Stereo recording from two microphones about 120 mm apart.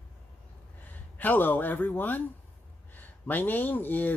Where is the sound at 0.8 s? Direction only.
15° left (ahead or behind).